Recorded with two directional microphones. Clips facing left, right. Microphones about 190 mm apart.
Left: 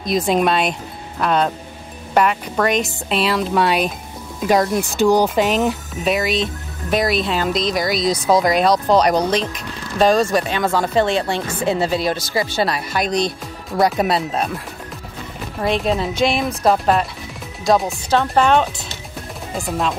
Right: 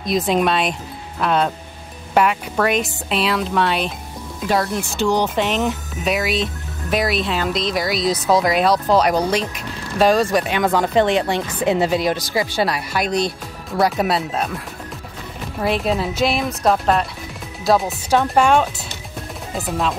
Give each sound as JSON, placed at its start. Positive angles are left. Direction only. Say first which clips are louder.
{"t": 0.0, "sound": "speech", "louder": "left 1 dB", "side_deg": 0}
{"t": 15.6, "sound": "speech", "louder": "left 1 dB", "side_deg": -5}